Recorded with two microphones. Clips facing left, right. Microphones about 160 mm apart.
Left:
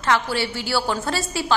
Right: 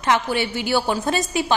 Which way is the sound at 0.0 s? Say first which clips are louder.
Right 1 dB; 20° right (ahead or behind).